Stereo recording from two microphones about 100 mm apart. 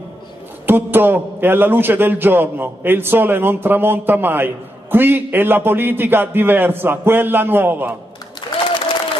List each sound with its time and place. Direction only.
0.7 s a man's voice: 20° right (ahead or behind)